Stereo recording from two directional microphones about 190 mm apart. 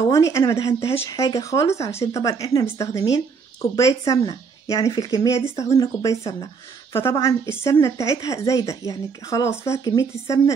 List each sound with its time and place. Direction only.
0.1 s a woman's voice: 15° left (ahead or behind)